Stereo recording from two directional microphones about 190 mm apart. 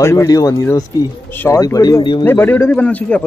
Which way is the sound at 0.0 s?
15° left (ahead or behind).